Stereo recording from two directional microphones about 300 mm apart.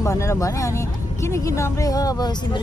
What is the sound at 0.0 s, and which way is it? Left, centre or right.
Speech, centre.